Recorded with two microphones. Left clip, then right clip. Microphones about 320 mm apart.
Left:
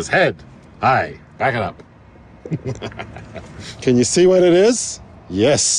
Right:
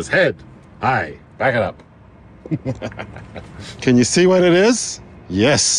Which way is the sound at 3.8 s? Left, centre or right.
Right.